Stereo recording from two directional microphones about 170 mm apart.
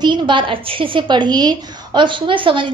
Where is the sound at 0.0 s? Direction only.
30° right (ahead or behind).